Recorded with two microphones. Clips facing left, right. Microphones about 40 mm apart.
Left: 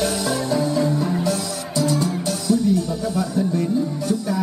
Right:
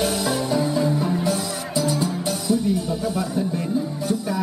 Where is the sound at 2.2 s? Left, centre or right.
Centre.